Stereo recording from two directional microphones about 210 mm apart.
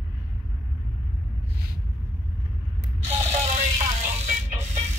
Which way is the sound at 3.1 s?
30° right (ahead or behind).